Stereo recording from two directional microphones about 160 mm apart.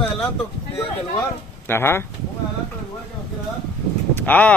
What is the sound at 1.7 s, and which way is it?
Speech, 15° left (ahead or behind).